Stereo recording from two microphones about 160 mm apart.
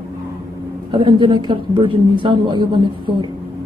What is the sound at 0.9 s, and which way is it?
Speech, 30° right (ahead or behind).